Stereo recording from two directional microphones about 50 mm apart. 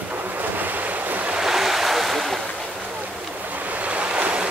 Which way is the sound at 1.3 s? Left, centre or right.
Centre.